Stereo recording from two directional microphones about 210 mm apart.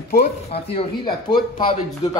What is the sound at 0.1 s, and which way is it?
Speech, 35° left (ahead or behind).